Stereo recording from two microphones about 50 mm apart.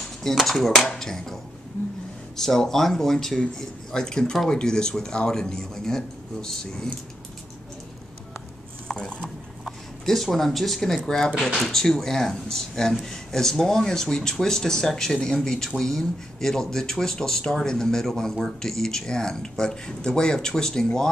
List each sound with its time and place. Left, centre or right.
0.2 s speech: centre
8.8 s a sound: centre
9.7 s speech: centre